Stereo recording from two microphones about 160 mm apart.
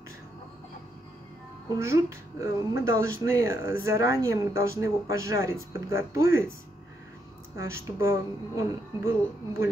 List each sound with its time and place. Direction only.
1.8 s speech: 20° right (ahead or behind)
7.5 s speech: 15° right (ahead or behind)